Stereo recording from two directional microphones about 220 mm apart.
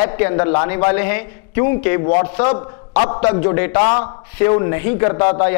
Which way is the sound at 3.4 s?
15° left (ahead or behind).